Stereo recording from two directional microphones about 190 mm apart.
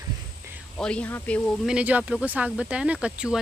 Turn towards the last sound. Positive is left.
turn(degrees=-5)  # may be behind; listen again after turning